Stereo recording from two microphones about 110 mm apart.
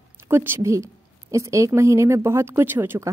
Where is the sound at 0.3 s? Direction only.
20° right (ahead or behind).